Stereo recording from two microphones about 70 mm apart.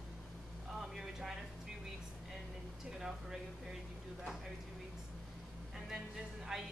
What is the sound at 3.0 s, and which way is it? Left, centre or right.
Speech, centre.